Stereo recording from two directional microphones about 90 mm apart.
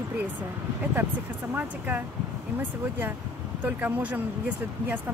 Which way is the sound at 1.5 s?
20° right (ahead or behind).